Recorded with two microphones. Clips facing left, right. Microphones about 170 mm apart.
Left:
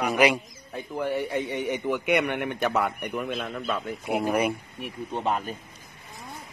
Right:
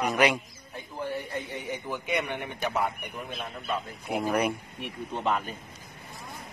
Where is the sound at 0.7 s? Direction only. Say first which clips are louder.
Left 6 dB; 70° left (ahead or behind).